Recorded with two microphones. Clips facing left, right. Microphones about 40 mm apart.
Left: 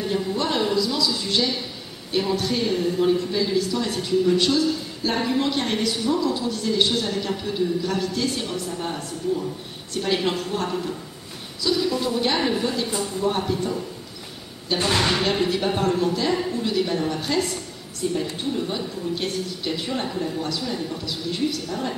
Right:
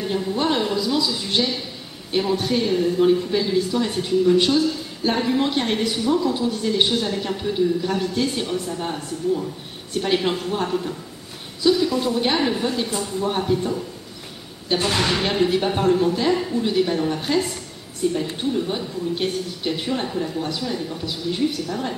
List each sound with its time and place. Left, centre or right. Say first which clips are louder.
0.0 s speech: right 1 dB; centre
0.7 s a woman's voice: right 1 dB; centre
2.3 s a woman's voice: right 2 dB; centre
8.5 s a woman's voice: right 2 dB; centre
13.2 s a woman's voice: right 2 dB; centre
14.8 s speech: left 1 dB; centre
15.4 s a woman's voice: right 3 dB; centre
16.6 s a woman's voice: right 5 dB; centre
16.9 s a woman's voice: right 2 dB; centre
19.9 s a woman's voice: right 2 dB; centre
21.0 s a woman's voice: right 5 dB; right
21.6 s speech: right 1 dB; centre